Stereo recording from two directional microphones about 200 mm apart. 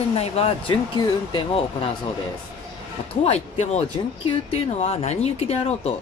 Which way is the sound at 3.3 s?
35° left (ahead or behind).